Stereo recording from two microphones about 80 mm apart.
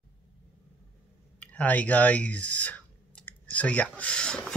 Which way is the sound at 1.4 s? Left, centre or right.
Centre.